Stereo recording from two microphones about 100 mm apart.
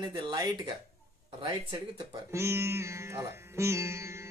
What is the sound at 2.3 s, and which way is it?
Music, 30° right (ahead or behind).